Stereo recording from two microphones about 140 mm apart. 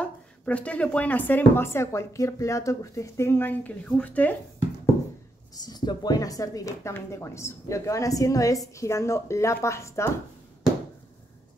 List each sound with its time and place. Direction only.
0.0 s a woman's voice: 10° left (ahead or behind)
5.5 s speech: 30° left (ahead or behind)